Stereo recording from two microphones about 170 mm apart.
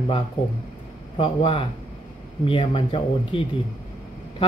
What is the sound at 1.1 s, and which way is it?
Speech, 35° left (ahead or behind).